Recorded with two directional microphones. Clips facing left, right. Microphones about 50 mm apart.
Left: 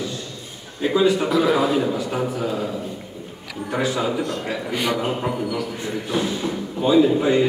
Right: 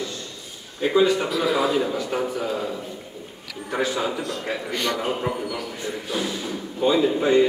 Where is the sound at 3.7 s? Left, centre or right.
Centre.